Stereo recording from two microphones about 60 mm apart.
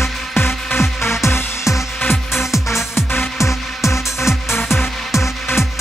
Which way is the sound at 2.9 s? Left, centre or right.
Left.